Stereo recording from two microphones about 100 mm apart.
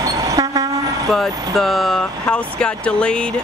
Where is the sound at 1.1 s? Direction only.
Centre (ahead or behind).